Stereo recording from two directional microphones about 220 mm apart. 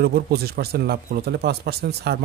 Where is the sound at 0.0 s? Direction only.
45° right (ahead or behind).